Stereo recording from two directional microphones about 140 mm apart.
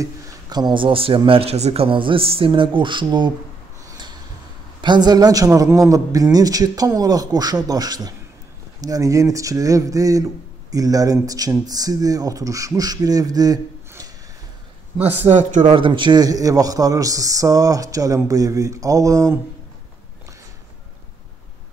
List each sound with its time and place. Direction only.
0.0 s speech: 30° right (ahead or behind)
4.8 s a man's voice: 30° right (ahead or behind)
15.0 s speech: 55° right (ahead or behind)
15.7 s a man's voice: 35° right (ahead or behind)